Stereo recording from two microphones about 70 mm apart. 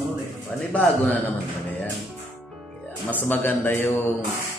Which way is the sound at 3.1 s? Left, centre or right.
Left.